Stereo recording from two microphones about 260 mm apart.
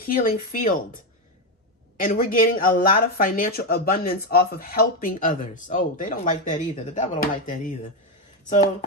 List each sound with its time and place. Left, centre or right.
0.0 s speech: left
2.0 s speech: left